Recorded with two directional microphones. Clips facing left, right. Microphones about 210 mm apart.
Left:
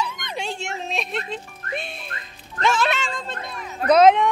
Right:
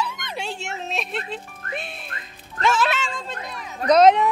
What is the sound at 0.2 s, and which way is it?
Music, 5° right (ahead or behind).